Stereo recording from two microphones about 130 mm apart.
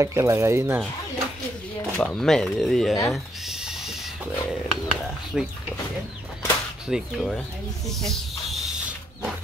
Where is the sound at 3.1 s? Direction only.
Centre (ahead or behind).